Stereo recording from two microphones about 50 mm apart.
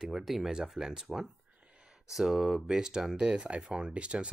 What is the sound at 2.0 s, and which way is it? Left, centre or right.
Speech, centre.